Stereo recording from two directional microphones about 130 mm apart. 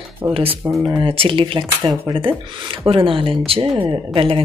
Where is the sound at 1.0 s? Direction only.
40° right (ahead or behind).